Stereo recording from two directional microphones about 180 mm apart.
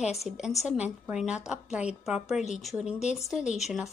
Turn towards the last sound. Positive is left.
turn(degrees=0)  # may be behind; listen again after turning